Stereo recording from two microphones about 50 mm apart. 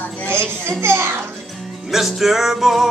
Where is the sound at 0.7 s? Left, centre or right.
Right.